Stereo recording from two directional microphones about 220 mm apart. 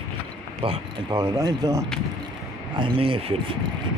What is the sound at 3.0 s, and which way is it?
Speech, 25° right (ahead or behind).